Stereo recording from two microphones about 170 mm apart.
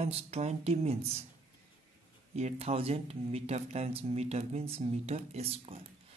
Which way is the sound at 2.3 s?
40° right (ahead or behind).